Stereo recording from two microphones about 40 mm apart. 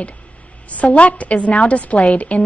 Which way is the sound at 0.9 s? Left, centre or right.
Left.